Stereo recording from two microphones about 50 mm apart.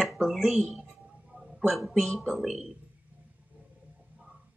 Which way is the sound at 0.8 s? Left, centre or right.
Centre.